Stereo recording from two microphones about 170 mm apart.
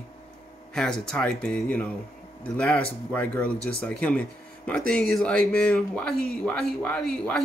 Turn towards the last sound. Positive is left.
turn(degrees=5)  # may be behind; listen again after turning